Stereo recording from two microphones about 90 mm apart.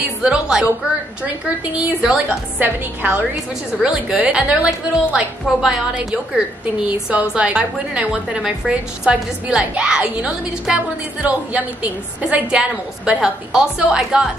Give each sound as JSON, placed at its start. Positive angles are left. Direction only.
{"t": 0.2, "sound": "a woman's voice", "side_deg": -10}
{"t": 2.0, "sound": "a woman's voice", "side_deg": -10}
{"t": 3.0, "sound": "a woman's voice", "side_deg": -20}
{"t": 3.8, "sound": "a woman's voice", "side_deg": -10}
{"t": 6.9, "sound": "a woman's voice", "side_deg": -15}